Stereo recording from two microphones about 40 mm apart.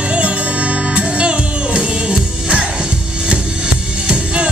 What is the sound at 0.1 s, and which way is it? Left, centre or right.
Music, right.